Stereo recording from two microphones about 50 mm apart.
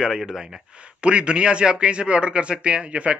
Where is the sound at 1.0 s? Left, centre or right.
Right.